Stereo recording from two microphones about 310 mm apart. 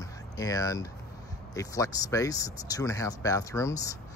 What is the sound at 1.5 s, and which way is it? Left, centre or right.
Speech, centre.